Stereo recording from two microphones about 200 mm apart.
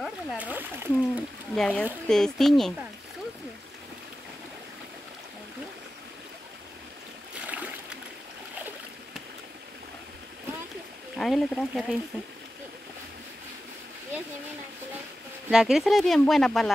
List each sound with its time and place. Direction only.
0.0 s speech: 5° right (ahead or behind)
1.5 s speech: 5° left (ahead or behind)
7.4 s a sound: 5° right (ahead or behind)
11.1 s speech: centre (ahead or behind)
15.5 s speech: 5° right (ahead or behind)